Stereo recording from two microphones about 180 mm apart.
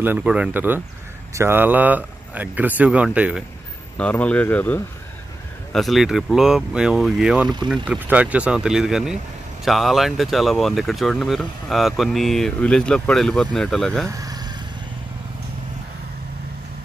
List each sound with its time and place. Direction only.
0.0 s speech: 10° right (ahead or behind)
4.0 s speech: 10° left (ahead or behind)
14.0 s speech: 20° right (ahead or behind)